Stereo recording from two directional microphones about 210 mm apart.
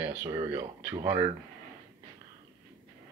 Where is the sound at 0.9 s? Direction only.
15° right (ahead or behind).